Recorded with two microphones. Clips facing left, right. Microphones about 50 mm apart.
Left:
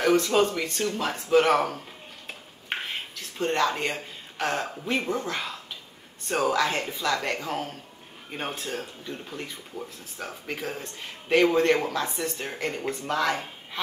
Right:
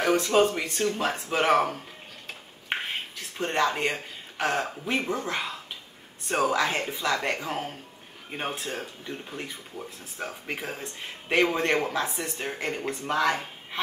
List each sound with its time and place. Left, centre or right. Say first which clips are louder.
0.0 s speech: even; centre
2.7 s a sound: right 1 dB; centre
3.2 s speech: left 1 dB; right